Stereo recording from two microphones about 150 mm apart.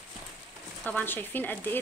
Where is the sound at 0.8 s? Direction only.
10° left (ahead or behind).